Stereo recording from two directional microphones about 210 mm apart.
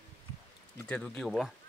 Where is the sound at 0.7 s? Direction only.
5° left (ahead or behind).